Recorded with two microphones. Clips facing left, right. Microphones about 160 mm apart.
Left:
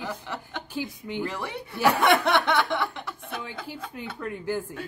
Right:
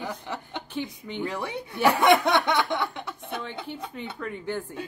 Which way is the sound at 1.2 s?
15° right (ahead or behind).